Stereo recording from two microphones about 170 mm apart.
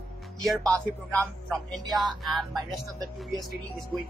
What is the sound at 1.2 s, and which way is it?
Speech, 5° left (ahead or behind).